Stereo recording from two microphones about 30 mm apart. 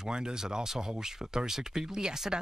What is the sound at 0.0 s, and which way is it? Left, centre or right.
Speech, right.